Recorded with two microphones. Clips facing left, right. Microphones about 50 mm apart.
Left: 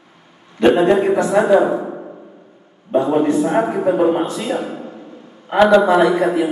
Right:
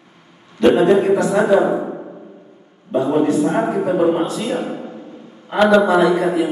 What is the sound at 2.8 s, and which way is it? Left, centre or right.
Speech, left.